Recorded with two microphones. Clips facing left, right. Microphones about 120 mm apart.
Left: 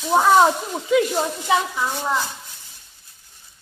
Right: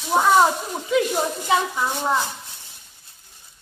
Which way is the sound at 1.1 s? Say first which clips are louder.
Left 1 dB; 15° right (ahead or behind).